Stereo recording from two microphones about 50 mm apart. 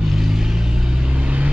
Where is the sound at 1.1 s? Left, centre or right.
Right.